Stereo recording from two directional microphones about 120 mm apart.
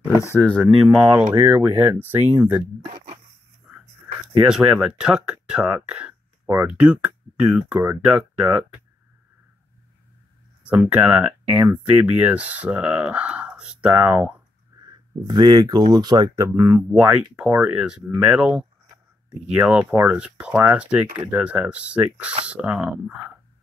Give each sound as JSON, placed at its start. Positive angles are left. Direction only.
{"t": 0.4, "sound": "speech", "side_deg": 10}
{"t": 1.3, "sound": "speech", "side_deg": -20}
{"t": 4.5, "sound": "speech", "side_deg": -5}
{"t": 10.6, "sound": "speech", "side_deg": -10}
{"t": 14.7, "sound": "a sound", "side_deg": -25}
{"t": 15.2, "sound": "speech", "side_deg": -35}
{"t": 16.9, "sound": "speech", "side_deg": -10}